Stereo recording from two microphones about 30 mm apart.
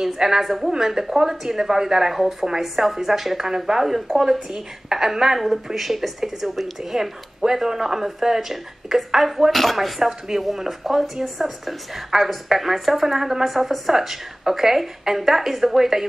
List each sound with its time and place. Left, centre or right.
0.0 s a woman's voice: centre
0.4 s a woman's voice: centre
0.7 s a woman's voice: centre
5.8 s a woman's voice: centre
9.5 s a woman's voice: centre
9.8 s a woman's voice: centre